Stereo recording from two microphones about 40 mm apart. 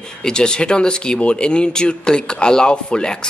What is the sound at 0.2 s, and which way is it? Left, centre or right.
Speech, left.